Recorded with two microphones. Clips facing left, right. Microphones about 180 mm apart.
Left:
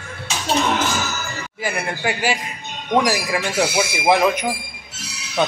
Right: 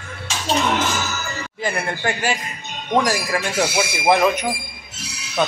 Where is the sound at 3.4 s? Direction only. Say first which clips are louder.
Left 1 dB; 5° left (ahead or behind).